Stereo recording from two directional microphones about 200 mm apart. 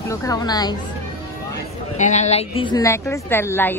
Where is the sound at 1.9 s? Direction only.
35° left (ahead or behind); by 3.7 s 10° left (ahead or behind).